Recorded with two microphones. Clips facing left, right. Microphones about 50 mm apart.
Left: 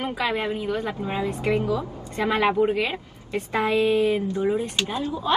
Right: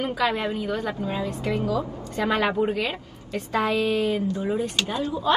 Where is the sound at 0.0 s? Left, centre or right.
Left.